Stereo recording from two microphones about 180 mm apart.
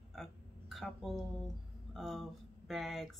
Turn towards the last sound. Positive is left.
turn(degrees=0)  # may be behind; listen again after turning